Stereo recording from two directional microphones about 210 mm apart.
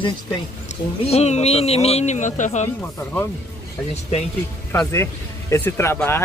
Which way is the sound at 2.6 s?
10° left (ahead or behind).